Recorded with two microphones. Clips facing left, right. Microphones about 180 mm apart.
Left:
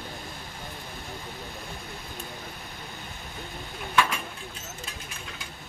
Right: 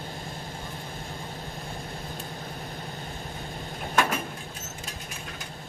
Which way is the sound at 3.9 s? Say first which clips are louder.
Even; 45° right (ahead or behind).